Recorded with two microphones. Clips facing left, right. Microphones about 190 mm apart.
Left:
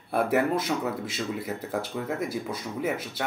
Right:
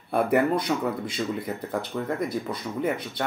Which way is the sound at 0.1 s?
Centre (ahead or behind).